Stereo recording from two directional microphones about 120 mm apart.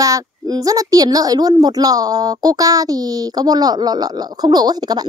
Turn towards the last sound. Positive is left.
turn(degrees=-35)  # may be behind; listen again after turning